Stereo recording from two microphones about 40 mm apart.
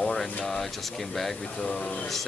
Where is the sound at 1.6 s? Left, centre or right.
Left.